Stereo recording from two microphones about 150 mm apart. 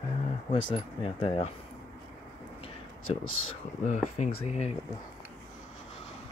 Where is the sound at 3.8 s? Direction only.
55° left (ahead or behind).